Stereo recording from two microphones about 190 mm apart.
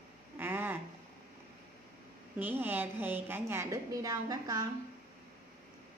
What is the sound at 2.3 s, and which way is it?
A child's voice, 10° right (ahead or behind).